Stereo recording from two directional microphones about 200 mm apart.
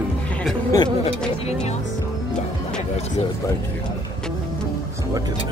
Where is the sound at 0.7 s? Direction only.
20° left (ahead or behind).